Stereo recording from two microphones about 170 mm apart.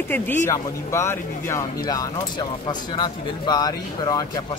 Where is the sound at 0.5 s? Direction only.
15° left (ahead or behind).